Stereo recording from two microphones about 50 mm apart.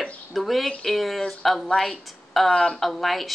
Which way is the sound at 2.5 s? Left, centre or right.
Centre.